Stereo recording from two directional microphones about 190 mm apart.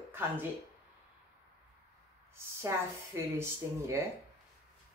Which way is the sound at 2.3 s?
15° right (ahead or behind).